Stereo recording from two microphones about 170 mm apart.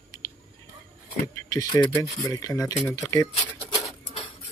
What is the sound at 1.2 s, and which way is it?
Speech, 20° left (ahead or behind).